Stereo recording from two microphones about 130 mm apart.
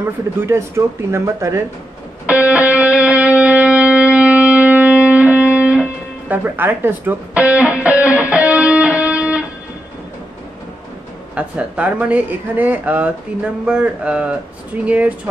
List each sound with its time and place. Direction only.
0.0 s speech: 20° right (ahead or behind)
2.2 s music: 10° right (ahead or behind)
11.3 s speech: 10° right (ahead or behind)